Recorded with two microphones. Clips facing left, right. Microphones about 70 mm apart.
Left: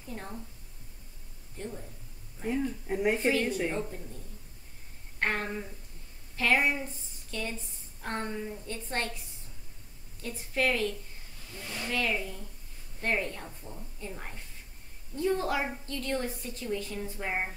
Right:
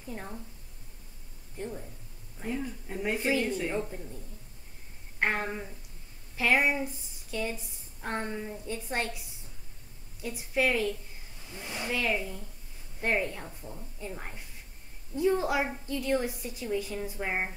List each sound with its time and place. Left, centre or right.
1.6 s a woman's voice: centre
2.9 s speech: centre
3.2 s a woman's voice: centre
3.4 s speech: centre
5.2 s a woman's voice: centre
10.2 s a woman's voice: centre